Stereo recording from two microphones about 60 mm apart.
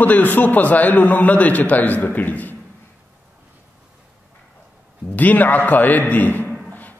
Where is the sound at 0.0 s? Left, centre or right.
Left.